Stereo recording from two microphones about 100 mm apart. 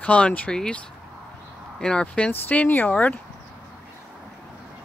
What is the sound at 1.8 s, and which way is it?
Speech, 10° left (ahead or behind).